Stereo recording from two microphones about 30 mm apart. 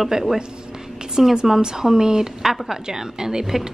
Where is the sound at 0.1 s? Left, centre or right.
Right.